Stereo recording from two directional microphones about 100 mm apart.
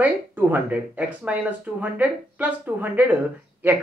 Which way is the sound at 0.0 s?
20° right (ahead or behind).